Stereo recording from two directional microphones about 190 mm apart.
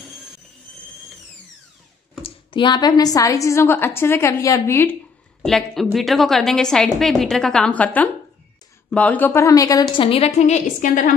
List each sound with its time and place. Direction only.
2.2 s a woman's voice: 25° left (ahead or behind)
5.4 s a woman's voice: centre (ahead or behind); by 9.8 s 20° left (ahead or behind)
9.9 s a woman's voice: 30° left (ahead or behind)